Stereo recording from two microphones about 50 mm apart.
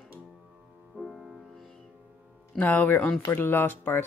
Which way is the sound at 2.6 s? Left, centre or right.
Left.